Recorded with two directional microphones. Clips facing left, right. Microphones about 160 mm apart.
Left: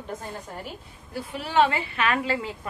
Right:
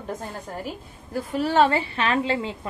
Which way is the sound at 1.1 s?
40° right (ahead or behind).